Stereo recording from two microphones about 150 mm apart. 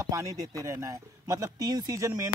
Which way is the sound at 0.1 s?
20° right (ahead or behind).